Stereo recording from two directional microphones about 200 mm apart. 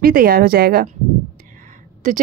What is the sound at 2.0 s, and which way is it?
Speech, 40° right (ahead or behind).